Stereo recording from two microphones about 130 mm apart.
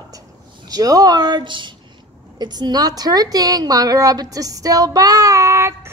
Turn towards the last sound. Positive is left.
turn(degrees=-20)  # may be behind; listen again after turning